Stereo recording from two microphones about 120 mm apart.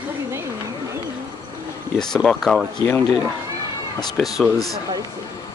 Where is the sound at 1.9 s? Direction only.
5° left (ahead or behind).